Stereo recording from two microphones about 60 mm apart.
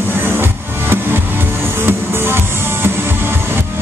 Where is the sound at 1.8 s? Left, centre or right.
Right.